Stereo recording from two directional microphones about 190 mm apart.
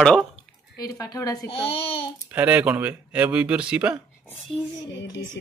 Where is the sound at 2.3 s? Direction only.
10° right (ahead or behind).